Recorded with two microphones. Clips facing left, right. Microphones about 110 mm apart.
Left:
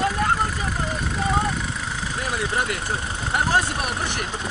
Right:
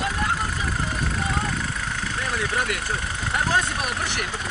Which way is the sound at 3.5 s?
10° left (ahead or behind).